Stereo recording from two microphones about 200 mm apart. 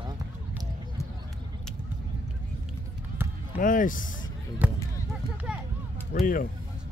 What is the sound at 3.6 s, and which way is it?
Speech, 40° left (ahead or behind).